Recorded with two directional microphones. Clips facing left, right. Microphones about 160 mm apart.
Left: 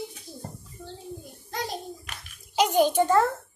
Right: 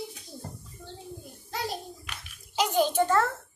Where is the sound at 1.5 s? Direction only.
Centre (ahead or behind).